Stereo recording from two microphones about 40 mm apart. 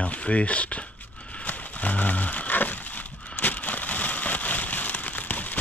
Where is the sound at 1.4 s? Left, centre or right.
Left.